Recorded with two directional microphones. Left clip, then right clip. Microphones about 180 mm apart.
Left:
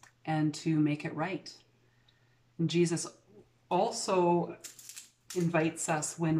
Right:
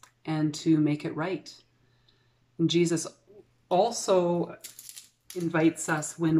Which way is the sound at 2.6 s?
5° left (ahead or behind).